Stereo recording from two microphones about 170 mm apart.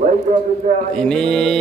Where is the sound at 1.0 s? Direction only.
5° left (ahead or behind).